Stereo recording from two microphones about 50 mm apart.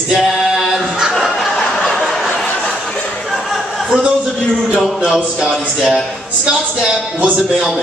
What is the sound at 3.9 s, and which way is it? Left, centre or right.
Speech, centre.